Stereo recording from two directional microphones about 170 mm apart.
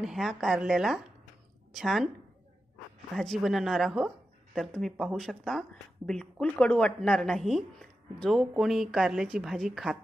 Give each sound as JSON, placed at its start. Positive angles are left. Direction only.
{"t": 0.0, "sound": "a woman's voice", "side_deg": 0}
{"t": 3.2, "sound": "speech", "side_deg": 0}